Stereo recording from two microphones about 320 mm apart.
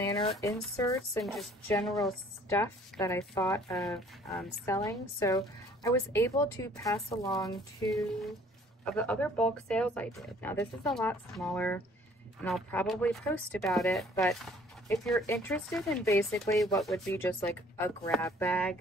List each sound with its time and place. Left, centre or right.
0.2 s a woman's voice: centre
8.8 s a woman's voice: centre